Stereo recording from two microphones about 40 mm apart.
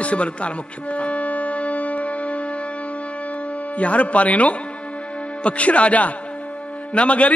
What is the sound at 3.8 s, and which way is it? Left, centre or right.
A man's voice, left.